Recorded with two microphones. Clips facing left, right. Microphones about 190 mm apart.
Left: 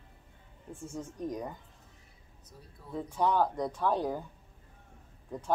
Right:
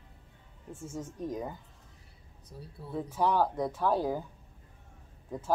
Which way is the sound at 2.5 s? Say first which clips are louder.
Right 7 dB; 30° right (ahead or behind).